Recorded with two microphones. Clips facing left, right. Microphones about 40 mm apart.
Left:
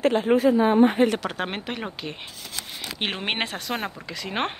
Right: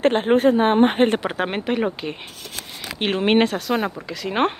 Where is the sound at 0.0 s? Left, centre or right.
Right.